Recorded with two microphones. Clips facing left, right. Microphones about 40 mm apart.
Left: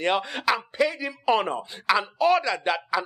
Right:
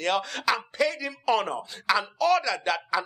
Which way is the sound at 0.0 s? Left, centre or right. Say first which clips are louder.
Left 2 dB; left.